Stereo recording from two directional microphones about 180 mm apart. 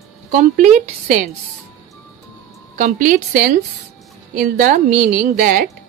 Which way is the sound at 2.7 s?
45° right (ahead or behind).